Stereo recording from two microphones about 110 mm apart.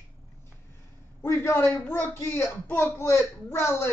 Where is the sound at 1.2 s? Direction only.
25° left (ahead or behind).